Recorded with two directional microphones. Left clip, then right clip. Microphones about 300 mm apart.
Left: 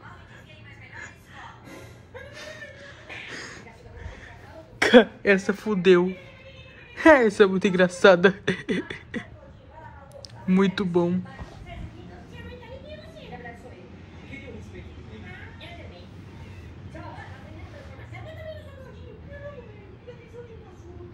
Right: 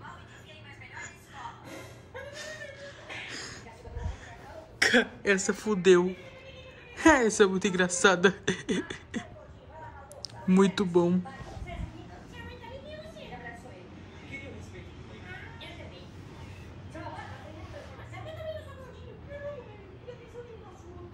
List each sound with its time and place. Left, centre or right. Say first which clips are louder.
2.3 s a sound: left 3 dB; centre
4.7 s speech: left 8 dB; centre
10.4 s speech: left 1 dB; centre